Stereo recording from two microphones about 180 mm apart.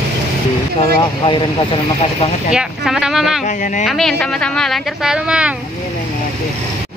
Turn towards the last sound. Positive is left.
turn(degrees=-5)  # may be behind; listen again after turning